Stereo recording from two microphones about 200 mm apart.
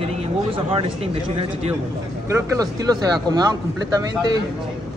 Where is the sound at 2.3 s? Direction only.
15° right (ahead or behind).